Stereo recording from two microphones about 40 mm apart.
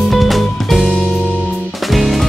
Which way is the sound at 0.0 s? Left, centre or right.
Centre.